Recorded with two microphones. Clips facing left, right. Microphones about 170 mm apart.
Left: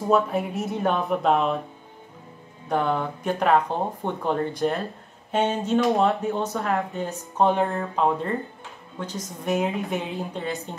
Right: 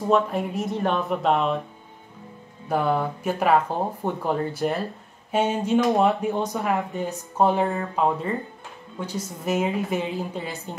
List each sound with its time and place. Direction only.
0.1 s speech: centre (ahead or behind)
2.7 s speech: 5° right (ahead or behind)